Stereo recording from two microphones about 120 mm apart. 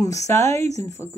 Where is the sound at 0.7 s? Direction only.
65° right (ahead or behind).